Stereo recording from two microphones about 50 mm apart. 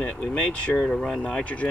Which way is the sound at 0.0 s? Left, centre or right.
Left.